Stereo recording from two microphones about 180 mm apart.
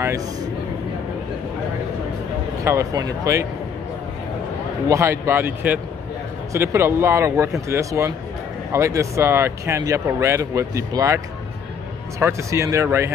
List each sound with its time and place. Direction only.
2.6 s speech: 15° right (ahead or behind)
4.8 s speech: 15° right (ahead or behind)
12.2 s speech: 15° right (ahead or behind)